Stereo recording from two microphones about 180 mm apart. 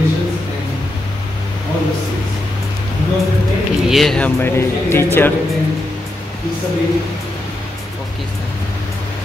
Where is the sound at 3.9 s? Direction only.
Centre (ahead or behind).